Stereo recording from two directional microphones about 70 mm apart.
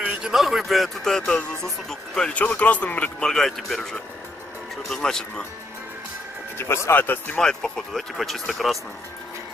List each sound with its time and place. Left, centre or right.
0.0 s speech: centre
2.3 s speech: left
3.2 s speech: centre
6.6 s speech: left
7.3 s speech: centre